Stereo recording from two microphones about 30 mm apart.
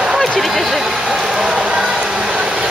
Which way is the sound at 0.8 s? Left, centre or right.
Centre.